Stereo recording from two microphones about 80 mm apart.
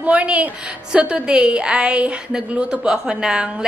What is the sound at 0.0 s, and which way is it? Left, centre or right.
A woman's voice, centre.